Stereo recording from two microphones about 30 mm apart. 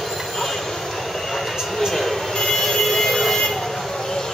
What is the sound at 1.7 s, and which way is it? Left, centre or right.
Vehicle, centre.